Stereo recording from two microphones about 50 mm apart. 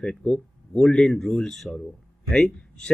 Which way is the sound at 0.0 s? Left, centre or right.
Centre.